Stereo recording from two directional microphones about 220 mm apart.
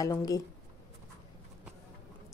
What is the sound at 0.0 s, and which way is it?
Speech, 15° left (ahead or behind).